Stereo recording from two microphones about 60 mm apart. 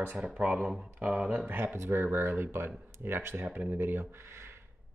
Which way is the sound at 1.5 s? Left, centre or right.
Right.